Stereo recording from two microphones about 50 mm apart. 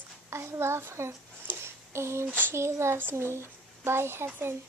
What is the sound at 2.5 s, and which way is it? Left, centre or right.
A child's voice, right.